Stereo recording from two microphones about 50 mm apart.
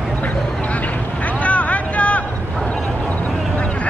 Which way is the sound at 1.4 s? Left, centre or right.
Left.